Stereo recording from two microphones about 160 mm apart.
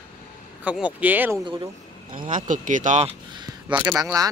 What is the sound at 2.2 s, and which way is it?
Speech, 55° right (ahead or behind).